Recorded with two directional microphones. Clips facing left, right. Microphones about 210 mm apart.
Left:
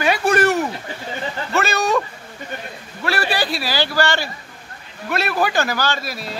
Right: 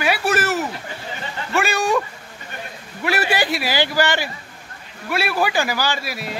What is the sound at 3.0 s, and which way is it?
Speech, 20° right (ahead or behind).